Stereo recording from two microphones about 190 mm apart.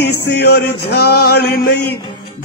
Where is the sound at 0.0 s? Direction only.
60° left (ahead or behind).